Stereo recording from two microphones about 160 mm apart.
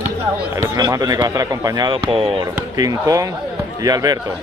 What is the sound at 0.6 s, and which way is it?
Speech, 20° right (ahead or behind).